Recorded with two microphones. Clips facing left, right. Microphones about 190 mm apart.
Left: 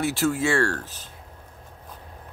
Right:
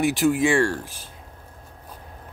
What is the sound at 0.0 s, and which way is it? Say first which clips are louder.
Speech: right 4 dB; 15° right (ahead or behind).